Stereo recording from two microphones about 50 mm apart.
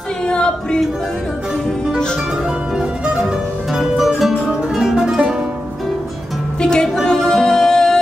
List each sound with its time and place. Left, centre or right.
0.3 s music: centre
3.7 s music: centre
6.6 s music: centre